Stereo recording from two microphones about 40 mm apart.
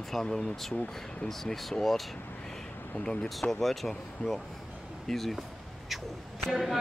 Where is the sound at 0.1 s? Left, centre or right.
Centre.